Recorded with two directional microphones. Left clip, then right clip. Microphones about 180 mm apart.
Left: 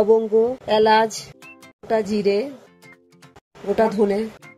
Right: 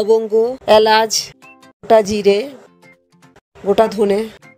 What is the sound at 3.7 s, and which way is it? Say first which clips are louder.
Speech: right 4 dB; 50° right (ahead or behind).